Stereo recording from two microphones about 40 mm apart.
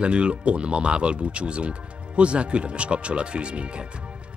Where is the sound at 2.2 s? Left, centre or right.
Right.